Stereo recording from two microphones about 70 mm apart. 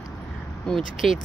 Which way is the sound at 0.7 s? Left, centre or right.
Centre.